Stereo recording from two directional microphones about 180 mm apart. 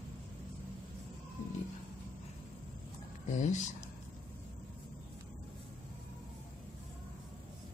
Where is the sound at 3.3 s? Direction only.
40° left (ahead or behind).